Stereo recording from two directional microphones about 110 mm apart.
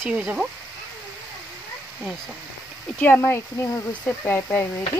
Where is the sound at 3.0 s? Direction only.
20° left (ahead or behind).